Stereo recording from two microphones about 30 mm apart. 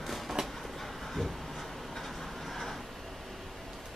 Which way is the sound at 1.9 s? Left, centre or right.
Centre.